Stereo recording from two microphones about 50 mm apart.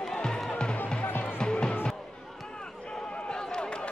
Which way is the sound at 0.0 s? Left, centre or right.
Centre.